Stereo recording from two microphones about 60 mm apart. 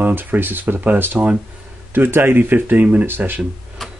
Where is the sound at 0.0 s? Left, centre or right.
Right.